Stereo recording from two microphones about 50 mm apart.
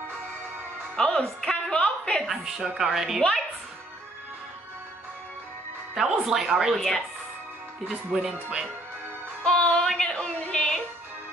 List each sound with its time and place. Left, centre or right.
0.9 s music: centre
2.2 s a woman's voice: centre
5.9 s a woman's voice: centre
6.7 s speech: centre
7.9 s a woman's voice: centre
9.4 s music: centre
9.8 s a sound: centre
10.4 s music: centre